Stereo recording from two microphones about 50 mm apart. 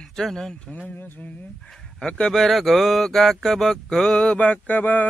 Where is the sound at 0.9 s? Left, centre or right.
Left.